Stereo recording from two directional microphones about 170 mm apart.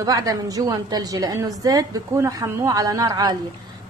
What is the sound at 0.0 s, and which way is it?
A woman's voice, 20° right (ahead or behind).